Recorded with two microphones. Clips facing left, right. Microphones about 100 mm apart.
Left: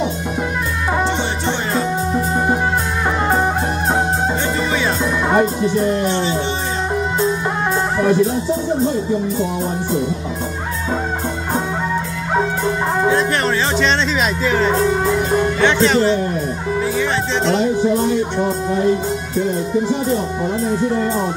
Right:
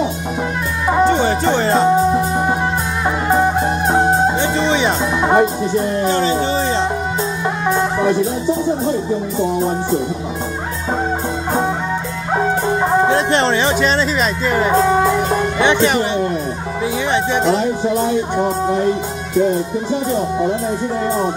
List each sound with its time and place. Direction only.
1.0 s music: 45° right (ahead or behind)
4.6 s music: 25° right (ahead or behind)
6.0 s music: 40° right (ahead or behind)
14.4 s speech: 5° right (ahead or behind)